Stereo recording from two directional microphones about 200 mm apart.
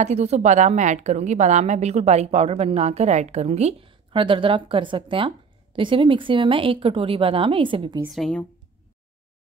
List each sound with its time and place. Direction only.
0.0 s a woman's voice: 35° right (ahead or behind)
8.0 s speech: centre (ahead or behind)